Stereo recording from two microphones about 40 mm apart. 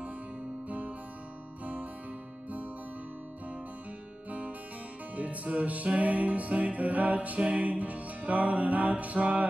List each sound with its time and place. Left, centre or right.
0.7 s guitar: right
5.1 s music: right